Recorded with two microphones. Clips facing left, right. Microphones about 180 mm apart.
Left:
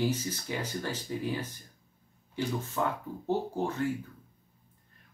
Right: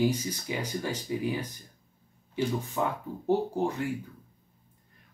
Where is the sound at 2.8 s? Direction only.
10° right (ahead or behind).